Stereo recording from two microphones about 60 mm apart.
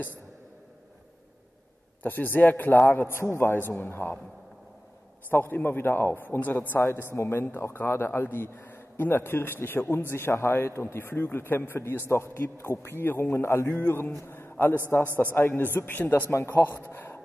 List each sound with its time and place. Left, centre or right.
2.0 s a man's voice: left
3.5 s speech: left
5.3 s speech: left
12.7 s a man's voice: left
13.8 s a man's voice: left